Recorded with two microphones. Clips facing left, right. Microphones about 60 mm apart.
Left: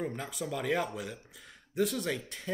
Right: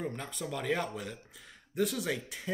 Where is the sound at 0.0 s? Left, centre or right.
Centre.